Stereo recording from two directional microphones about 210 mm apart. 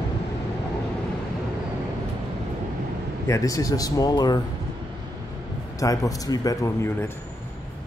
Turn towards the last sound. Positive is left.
turn(degrees=15)  # may be behind; listen again after turning